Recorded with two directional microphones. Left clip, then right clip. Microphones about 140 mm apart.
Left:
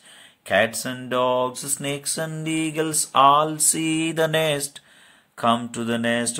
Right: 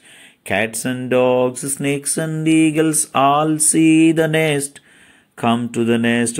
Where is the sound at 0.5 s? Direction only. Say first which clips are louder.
Right 1 dB; 25° right (ahead or behind).